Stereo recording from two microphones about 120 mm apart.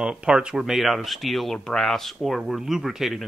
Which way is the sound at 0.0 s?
5° right (ahead or behind).